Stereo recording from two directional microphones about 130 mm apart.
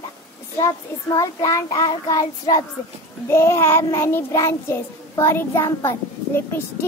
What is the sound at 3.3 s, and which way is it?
A child's voice, 20° left (ahead or behind).